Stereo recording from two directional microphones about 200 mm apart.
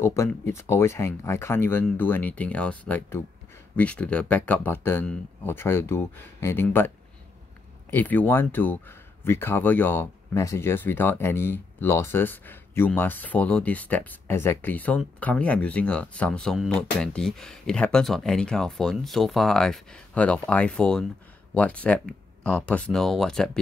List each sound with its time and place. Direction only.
0.0 s speech: 15° left (ahead or behind)
7.9 s speech: 10° left (ahead or behind)